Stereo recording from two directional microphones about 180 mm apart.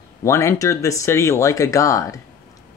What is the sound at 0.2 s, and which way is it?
Speech, 15° left (ahead or behind).